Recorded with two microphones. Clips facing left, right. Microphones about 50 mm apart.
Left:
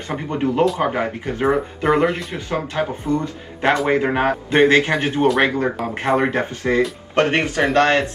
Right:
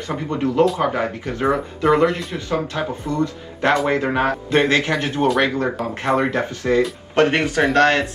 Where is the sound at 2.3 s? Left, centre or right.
Left.